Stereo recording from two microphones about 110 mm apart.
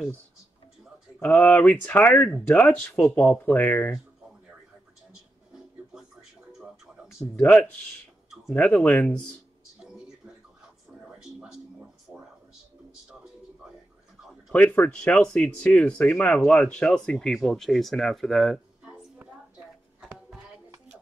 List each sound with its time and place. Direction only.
1.2 s speech: 15° left (ahead or behind)
8.5 s speech: 15° left (ahead or behind)
11.0 s a sound: 5° right (ahead or behind)
14.5 s speech: 15° left (ahead or behind)